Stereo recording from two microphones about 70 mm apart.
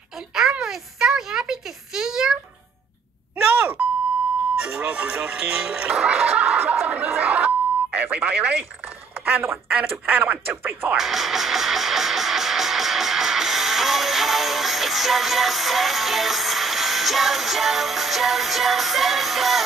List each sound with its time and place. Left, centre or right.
0.3 s a sound: centre
3.4 s beep: right
4.6 s music: centre
6.6 s chatter: right
7.1 s a sound: right
9.2 s speech: right
11.0 s music: centre